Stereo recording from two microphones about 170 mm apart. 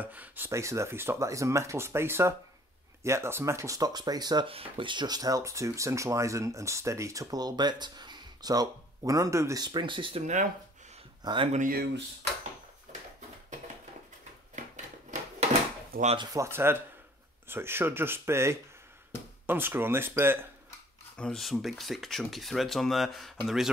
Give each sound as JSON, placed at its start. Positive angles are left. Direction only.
{"t": 0.0, "sound": "speech", "side_deg": -10}
{"t": 11.2, "sound": "speech", "side_deg": -30}
{"t": 11.5, "sound": "speech", "side_deg": -60}
{"t": 16.2, "sound": "speech", "side_deg": -15}
{"t": 21.2, "sound": "speech", "side_deg": 0}